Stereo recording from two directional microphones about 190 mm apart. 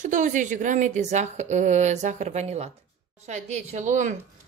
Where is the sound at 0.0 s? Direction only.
40° right (ahead or behind).